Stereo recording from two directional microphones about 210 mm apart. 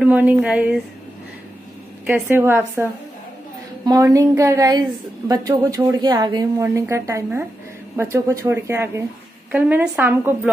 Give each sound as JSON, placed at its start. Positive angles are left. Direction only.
{"t": 0.0, "sound": "a woman's voice", "side_deg": -5}
{"t": 2.0, "sound": "a woman's voice", "side_deg": -10}